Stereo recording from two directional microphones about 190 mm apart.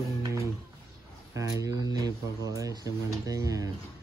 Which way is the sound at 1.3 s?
20° right (ahead or behind).